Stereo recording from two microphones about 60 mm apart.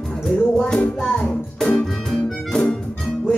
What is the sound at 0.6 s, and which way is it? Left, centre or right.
Music, centre.